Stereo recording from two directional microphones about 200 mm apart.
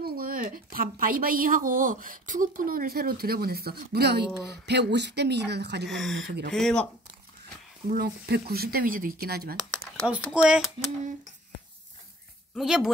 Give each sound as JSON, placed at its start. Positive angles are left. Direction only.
{"t": 0.0, "sound": "a woman's voice", "side_deg": -45}
{"t": 5.9, "sound": "speech", "side_deg": 0}
{"t": 6.2, "sound": "speech", "side_deg": -55}
{"t": 6.5, "sound": "speech", "side_deg": 5}
{"t": 7.9, "sound": "a woman's voice", "side_deg": -50}
{"t": 9.9, "sound": "speech", "side_deg": -5}
{"t": 12.5, "sound": "speech", "side_deg": 0}